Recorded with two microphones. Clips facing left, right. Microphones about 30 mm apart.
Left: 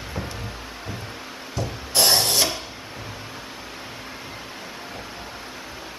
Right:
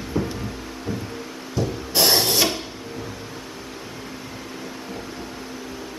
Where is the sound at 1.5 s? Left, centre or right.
Centre.